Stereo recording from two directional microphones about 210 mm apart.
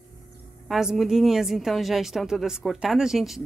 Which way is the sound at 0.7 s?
Centre (ahead or behind).